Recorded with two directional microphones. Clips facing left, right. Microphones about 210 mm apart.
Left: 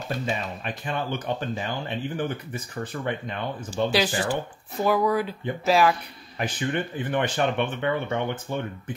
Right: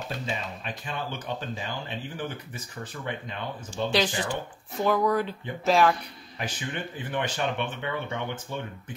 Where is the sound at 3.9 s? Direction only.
5° left (ahead or behind).